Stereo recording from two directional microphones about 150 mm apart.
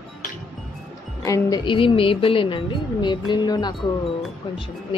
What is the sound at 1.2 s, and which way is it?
Speech, 20° left (ahead or behind).